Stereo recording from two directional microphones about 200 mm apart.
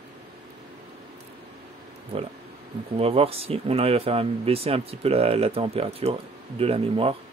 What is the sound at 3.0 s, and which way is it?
Speech, 30° right (ahead or behind).